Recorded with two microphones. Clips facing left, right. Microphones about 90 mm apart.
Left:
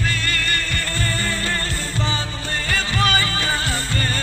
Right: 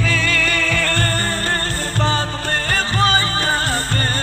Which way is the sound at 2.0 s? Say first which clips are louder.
Right 7 dB; 50° right (ahead or behind).